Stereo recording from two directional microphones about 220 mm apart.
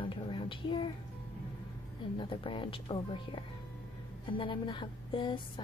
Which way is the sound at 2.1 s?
25° left (ahead or behind).